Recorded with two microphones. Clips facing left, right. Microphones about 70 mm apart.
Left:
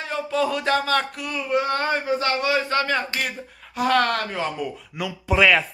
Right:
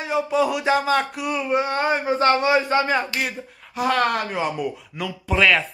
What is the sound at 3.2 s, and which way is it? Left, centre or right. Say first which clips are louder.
Speech: right 1 dB; centre.